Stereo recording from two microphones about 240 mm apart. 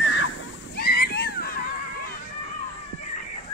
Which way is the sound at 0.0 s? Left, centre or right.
Left.